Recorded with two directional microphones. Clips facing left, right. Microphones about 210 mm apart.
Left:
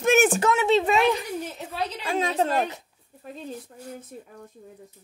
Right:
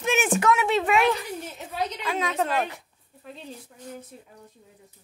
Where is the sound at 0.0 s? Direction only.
45° left (ahead or behind).